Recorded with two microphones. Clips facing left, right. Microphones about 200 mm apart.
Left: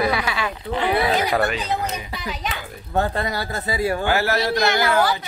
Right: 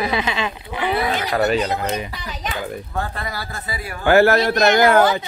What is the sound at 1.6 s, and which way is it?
Speech, 55° right (ahead or behind).